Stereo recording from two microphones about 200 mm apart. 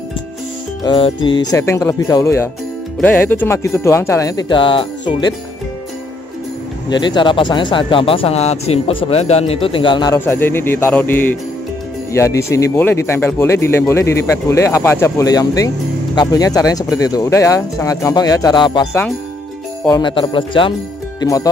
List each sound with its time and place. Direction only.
0.8 s speech: 25° left (ahead or behind)
6.9 s speech: 20° left (ahead or behind)
10.1 s speech: 10° left (ahead or behind)
19.9 s speech: 25° left (ahead or behind)
21.2 s music: 15° left (ahead or behind)